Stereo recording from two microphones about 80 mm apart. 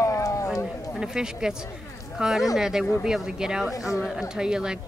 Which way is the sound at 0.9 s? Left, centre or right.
Centre.